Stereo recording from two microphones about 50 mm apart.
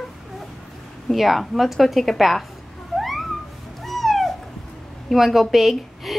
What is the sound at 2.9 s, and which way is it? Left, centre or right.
Cat, centre.